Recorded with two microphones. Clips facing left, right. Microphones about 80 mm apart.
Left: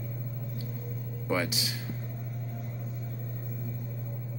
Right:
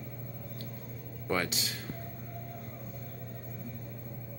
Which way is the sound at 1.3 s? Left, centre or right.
Centre.